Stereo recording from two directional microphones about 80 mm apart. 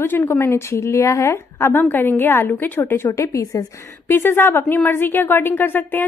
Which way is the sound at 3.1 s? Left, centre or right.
Left.